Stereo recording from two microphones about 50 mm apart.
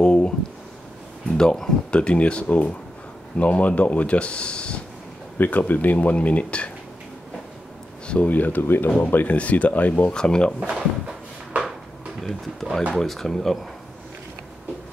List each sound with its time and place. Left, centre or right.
0.0 s a sound: left
1.3 s speech: centre
5.4 s speech: left
8.1 s speech: left
8.6 s speech: left
9.1 s speech: left
10.1 s speech: centre
10.6 s a sound: centre
12.2 s speech: centre